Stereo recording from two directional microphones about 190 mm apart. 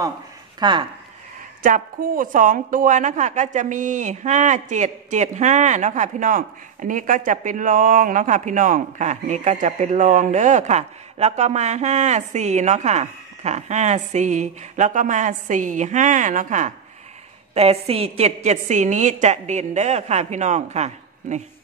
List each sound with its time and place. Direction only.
0.6 s speech: 25° right (ahead or behind)
1.6 s a woman's voice: 45° right (ahead or behind)